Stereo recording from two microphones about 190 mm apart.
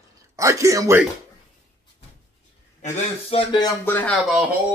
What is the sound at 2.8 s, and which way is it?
Speech, 35° left (ahead or behind).